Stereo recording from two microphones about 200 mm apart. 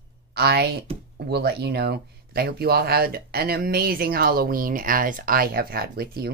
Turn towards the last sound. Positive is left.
turn(degrees=-50)  # may be behind; listen again after turning